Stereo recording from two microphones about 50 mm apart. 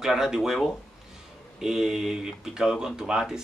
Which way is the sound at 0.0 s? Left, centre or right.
Centre.